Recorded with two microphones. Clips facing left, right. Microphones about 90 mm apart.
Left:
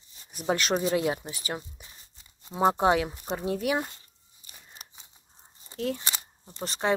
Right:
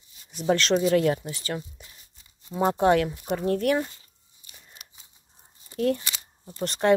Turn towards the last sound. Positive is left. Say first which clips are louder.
# right 5 dB
turn(degrees=0)  # may be behind; listen again after turning